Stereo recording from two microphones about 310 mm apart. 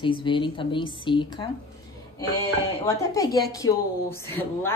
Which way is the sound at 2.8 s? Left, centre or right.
Centre.